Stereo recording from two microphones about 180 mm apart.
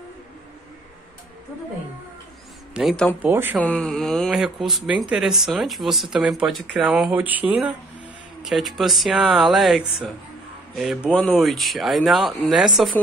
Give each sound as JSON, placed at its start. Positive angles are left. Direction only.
{"t": 2.7, "sound": "speech", "side_deg": 0}
{"t": 3.2, "sound": "speech", "side_deg": -10}
{"t": 3.5, "sound": "speech", "side_deg": 5}